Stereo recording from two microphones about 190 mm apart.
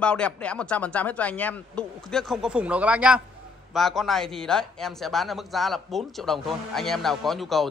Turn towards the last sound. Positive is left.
turn(degrees=0)  # may be behind; listen again after turning